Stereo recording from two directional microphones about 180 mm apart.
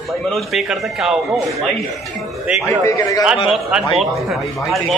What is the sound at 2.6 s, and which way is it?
Speech, 15° left (ahead or behind).